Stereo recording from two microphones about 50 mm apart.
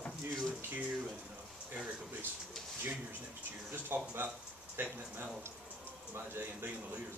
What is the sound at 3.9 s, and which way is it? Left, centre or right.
Speech, right.